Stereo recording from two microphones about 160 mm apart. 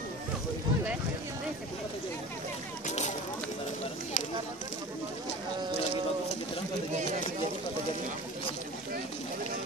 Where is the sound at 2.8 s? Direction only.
45° left (ahead or behind).